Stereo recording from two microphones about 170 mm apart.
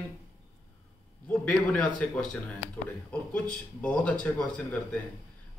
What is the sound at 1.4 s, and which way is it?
Speech, 5° left (ahead or behind).